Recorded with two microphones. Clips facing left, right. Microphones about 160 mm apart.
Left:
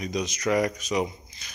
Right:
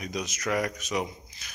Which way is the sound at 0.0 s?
5° right (ahead or behind).